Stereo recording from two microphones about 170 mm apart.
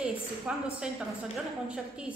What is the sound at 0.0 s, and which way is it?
A woman's voice, 5° right (ahead or behind).